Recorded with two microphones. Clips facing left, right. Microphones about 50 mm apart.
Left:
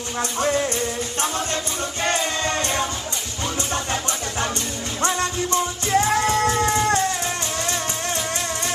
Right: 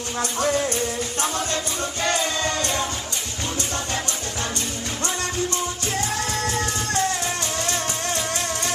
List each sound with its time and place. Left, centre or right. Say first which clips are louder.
0.2 s music: left 1 dB; left
5.0 s music: left 4 dB; left